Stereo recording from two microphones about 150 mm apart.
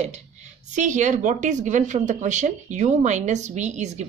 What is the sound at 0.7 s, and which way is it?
A woman's voice, 55° right (ahead or behind).